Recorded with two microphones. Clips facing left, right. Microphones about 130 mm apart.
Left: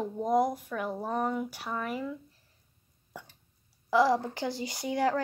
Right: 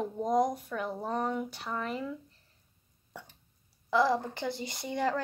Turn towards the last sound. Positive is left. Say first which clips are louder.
# left 3 dB
turn(degrees=10)  # may be behind; listen again after turning